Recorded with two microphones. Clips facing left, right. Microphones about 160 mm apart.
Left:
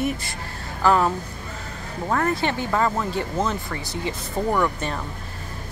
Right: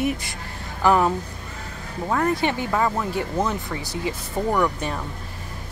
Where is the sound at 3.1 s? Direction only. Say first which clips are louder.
Right 1 dB; 15° right (ahead or behind).